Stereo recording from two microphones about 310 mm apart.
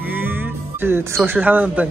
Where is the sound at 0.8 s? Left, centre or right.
Centre.